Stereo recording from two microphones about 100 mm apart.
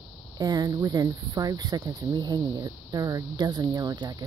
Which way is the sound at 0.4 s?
40° right (ahead or behind).